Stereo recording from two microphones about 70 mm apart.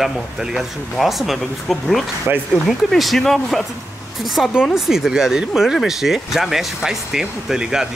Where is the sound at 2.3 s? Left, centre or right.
Right.